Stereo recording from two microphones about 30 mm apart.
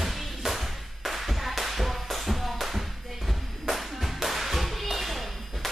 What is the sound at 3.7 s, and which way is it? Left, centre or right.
Music, centre.